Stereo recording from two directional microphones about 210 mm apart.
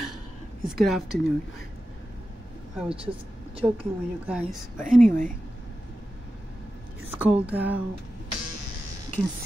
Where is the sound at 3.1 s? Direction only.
25° right (ahead or behind).